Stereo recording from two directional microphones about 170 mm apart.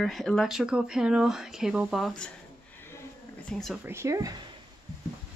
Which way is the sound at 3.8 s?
15° right (ahead or behind).